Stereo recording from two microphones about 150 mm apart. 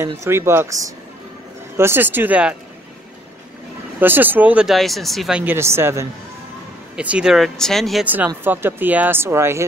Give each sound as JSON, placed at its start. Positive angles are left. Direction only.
{"t": 0.0, "sound": "speech", "side_deg": -20}
{"t": 4.0, "sound": "speech", "side_deg": -15}
{"t": 5.4, "sound": "speech", "side_deg": -15}
{"t": 8.0, "sound": "speech", "side_deg": -10}